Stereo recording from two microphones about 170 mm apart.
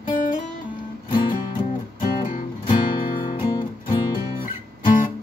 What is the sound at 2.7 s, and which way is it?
Music, 25° left (ahead or behind).